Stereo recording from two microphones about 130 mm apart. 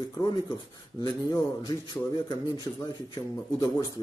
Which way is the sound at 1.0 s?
35° left (ahead or behind).